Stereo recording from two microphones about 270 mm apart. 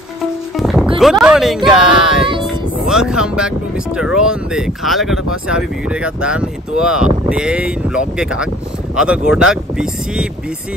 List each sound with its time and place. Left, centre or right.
0.6 s music: centre
0.9 s speech: centre